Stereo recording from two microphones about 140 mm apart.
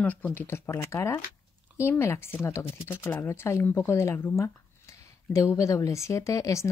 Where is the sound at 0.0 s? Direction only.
10° left (ahead or behind).